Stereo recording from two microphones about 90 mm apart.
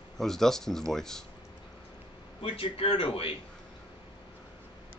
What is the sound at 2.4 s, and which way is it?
Speech, 90° left.